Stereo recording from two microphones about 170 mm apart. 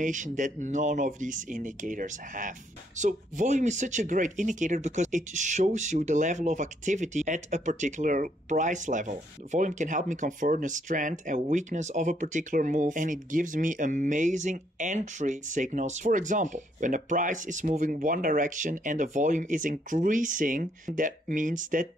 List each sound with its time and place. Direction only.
0.0 s speech: 50° right (ahead or behind)